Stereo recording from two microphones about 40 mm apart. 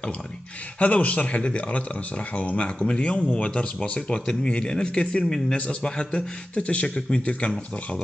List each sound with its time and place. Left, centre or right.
0.7 s speech: left
6.5 s speech: left